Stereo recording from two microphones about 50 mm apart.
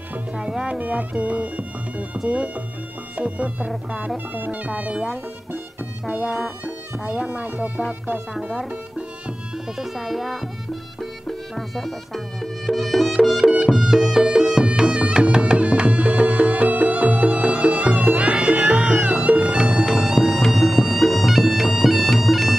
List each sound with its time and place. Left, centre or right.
0.4 s speech: centre
0.7 s speech: right
2.2 s music: right
6.0 s music: right
6.6 s speech: right
9.8 s speech: centre
11.0 s music: centre
13.7 s music: centre
14.9 s music: right
20.1 s music: centre
20.5 s bagpipes: centre